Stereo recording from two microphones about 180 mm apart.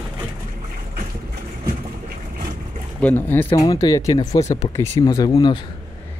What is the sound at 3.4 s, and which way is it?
Speech, 25° left (ahead or behind).